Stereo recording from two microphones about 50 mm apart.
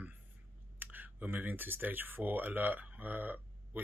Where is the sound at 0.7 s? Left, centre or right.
Right.